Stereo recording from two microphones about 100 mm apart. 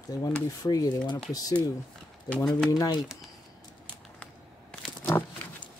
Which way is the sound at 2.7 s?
40° left (ahead or behind).